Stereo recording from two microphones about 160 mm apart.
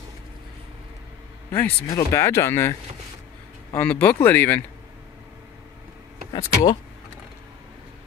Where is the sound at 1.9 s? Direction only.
20° left (ahead or behind).